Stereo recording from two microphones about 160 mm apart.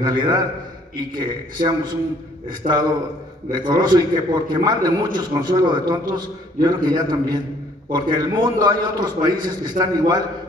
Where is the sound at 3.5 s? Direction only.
25° right (ahead or behind).